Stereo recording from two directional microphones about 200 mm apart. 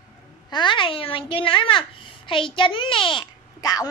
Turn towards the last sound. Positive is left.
turn(degrees=20)  # may be behind; listen again after turning